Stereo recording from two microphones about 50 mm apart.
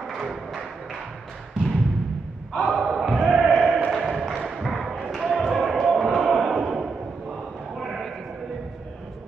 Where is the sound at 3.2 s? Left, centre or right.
Centre.